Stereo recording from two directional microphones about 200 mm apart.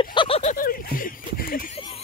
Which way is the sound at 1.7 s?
30° left (ahead or behind).